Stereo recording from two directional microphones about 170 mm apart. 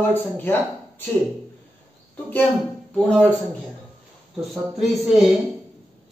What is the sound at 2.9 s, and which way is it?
Speech, 5° left (ahead or behind).